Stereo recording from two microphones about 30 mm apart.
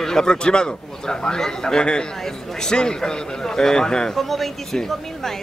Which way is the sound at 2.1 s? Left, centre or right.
Centre.